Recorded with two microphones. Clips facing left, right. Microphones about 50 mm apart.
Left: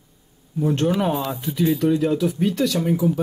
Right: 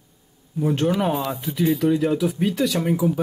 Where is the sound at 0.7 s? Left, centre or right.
Centre.